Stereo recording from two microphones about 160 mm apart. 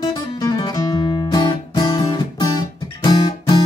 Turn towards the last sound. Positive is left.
turn(degrees=25)  # may be behind; listen again after turning